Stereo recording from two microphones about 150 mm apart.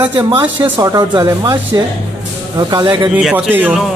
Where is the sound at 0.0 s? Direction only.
20° right (ahead or behind).